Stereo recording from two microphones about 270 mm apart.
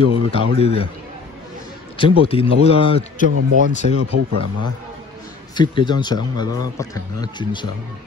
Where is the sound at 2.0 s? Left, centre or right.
Centre.